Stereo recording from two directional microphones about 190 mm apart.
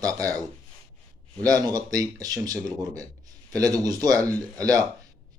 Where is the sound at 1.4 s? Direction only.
20° right (ahead or behind).